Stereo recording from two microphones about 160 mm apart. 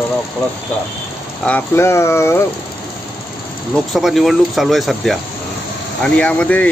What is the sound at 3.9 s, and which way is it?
Speech, centre (ahead or behind).